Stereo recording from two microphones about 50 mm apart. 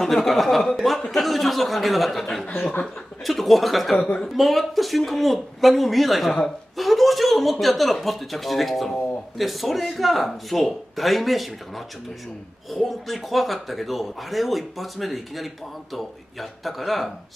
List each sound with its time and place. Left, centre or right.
0.0 s speech: centre
2.5 s speech: left
3.3 s speech: centre